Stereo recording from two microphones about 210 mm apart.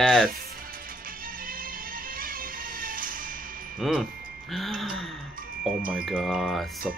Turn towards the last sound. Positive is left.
turn(degrees=0)  # may be behind; listen again after turning